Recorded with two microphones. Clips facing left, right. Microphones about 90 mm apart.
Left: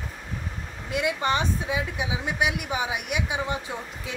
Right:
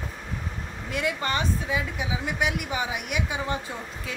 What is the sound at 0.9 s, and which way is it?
A woman's voice, 20° left (ahead or behind).